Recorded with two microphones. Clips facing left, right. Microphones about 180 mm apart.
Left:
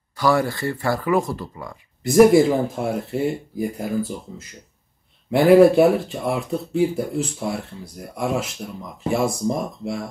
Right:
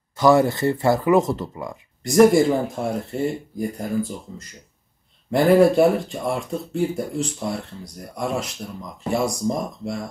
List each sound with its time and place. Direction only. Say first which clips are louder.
0.1 s speech: right 4 dB; 20° right (ahead or behind)
2.0 s speech: left 1 dB; 5° left (ahead or behind)